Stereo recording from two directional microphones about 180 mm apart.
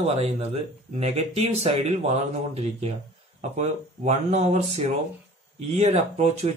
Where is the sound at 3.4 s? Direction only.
40° right (ahead or behind).